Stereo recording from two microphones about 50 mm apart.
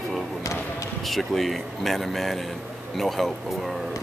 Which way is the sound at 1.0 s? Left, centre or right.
Centre.